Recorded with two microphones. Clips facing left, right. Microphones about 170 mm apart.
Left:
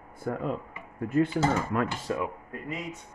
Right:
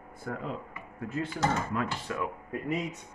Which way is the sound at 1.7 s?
60° left (ahead or behind).